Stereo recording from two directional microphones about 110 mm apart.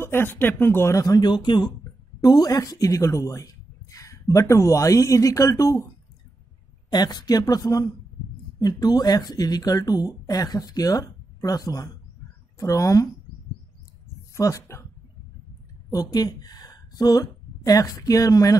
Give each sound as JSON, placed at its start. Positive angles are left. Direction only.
{"t": 0.0, "sound": "speech", "side_deg": 20}
{"t": 2.2, "sound": "speech", "side_deg": 35}
{"t": 6.9, "sound": "speech", "side_deg": 40}
{"t": 14.3, "sound": "speech", "side_deg": 25}
{"t": 15.9, "sound": "a woman's voice", "side_deg": 35}